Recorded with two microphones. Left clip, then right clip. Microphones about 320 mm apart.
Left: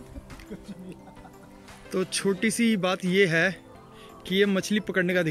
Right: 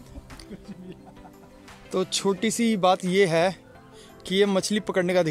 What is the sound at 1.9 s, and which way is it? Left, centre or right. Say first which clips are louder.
A man's voice: right 2 dB; centre.